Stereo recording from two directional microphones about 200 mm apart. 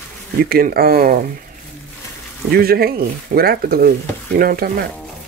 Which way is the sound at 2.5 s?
50° right (ahead or behind).